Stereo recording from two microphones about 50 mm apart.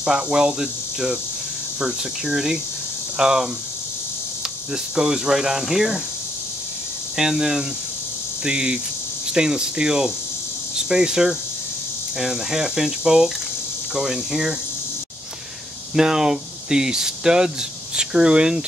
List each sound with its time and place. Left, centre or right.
0.0 s speech: centre
4.9 s speech: centre
7.2 s speech: centre
8.5 s cricket: centre
9.3 s speech: centre
15.9 s speech: centre